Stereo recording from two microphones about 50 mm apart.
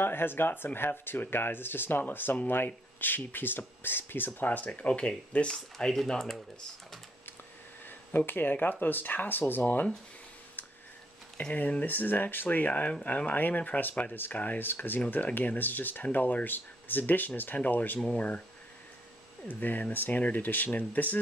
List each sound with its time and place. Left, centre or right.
0.0 s speech: left; by 6.4 s centre
8.3 s speech: left
10.6 s tick-tock: left
11.5 s speech: left
19.4 s speech: left